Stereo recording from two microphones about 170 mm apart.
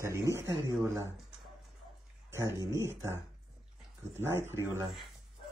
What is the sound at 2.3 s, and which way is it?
Speech, 20° right (ahead or behind).